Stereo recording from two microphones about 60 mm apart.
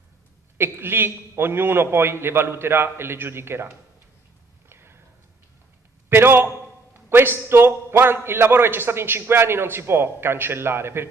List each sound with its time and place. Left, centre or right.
0.6 s a man's voice: right
4.6 s a sound: right
6.0 s a man's voice: right